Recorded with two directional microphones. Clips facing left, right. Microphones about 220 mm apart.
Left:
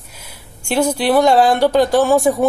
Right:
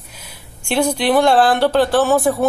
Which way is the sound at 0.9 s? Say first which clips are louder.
Left 1 dB; 10° left (ahead or behind).